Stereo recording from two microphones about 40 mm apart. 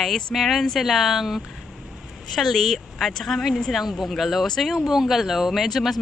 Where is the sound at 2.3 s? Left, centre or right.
Centre.